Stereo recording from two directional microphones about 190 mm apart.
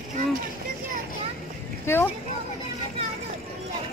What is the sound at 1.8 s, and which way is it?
Vehicle, 10° left (ahead or behind).